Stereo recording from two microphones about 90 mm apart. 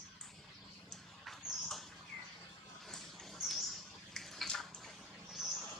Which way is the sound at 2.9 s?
5° left (ahead or behind).